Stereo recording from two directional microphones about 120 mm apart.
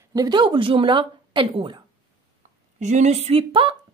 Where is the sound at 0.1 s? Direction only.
35° right (ahead or behind).